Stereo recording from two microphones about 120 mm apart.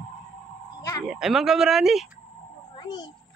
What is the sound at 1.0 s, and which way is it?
Speech, 5° right (ahead or behind).